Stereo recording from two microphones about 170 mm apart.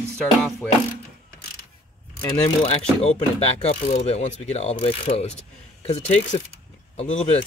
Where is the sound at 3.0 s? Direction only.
40° left (ahead or behind).